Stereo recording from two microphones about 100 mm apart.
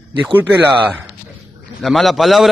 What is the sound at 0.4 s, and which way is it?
Speech, 15° right (ahead or behind).